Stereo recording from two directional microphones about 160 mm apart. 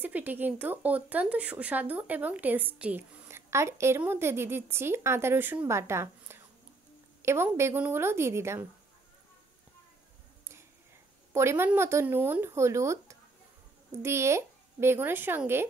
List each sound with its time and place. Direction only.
0.0 s speech: 10° right (ahead or behind)
11.3 s speech: 15° right (ahead or behind)